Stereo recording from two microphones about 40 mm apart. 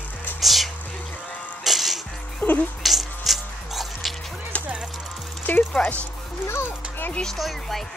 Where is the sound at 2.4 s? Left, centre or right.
Left.